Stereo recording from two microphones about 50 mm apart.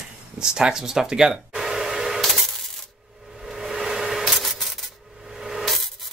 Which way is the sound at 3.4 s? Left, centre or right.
Centre.